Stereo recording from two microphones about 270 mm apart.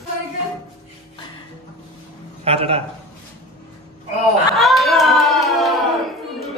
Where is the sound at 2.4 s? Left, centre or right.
Right.